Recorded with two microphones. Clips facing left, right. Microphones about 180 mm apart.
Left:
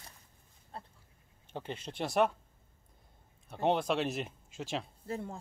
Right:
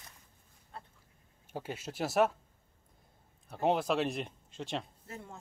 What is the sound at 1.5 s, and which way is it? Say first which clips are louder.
Speech: right 1 dB; 5° right (ahead or behind).